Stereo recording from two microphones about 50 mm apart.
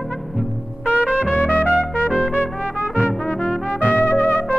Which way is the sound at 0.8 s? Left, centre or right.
Right.